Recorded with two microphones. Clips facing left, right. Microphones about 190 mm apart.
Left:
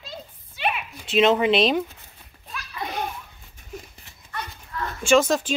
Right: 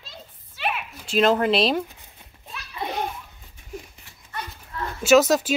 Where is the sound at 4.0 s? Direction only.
35° left (ahead or behind).